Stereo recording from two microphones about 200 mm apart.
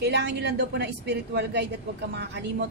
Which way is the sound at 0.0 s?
55° right (ahead or behind).